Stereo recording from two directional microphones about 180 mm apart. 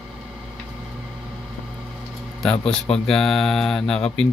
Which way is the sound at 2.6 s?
5° left (ahead or behind).